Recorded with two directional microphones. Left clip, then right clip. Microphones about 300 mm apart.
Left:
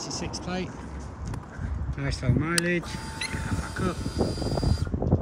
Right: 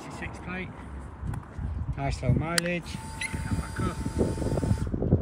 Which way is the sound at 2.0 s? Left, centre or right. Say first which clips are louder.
Left 1 dB; centre.